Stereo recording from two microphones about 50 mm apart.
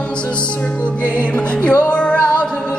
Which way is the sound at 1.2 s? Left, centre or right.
Left.